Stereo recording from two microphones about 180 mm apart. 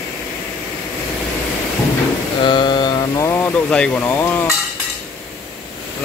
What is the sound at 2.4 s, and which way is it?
Mantra, 25° left (ahead or behind).